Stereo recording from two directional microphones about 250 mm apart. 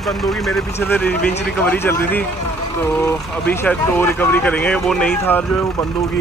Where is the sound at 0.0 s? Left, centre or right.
Centre.